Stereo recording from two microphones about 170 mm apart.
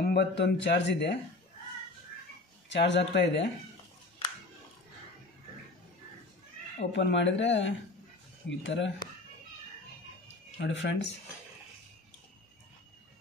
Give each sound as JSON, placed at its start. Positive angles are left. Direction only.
{"t": 0.0, "sound": "speech", "side_deg": 75}
{"t": 2.7, "sound": "speech", "side_deg": 90}
{"t": 6.9, "sound": "speech", "side_deg": 90}
{"t": 10.2, "sound": "a sound", "side_deg": 90}